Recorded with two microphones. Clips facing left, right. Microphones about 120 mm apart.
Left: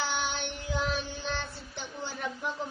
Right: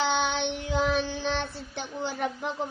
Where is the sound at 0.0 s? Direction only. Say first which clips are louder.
Right 6 dB; 70° right (ahead or behind).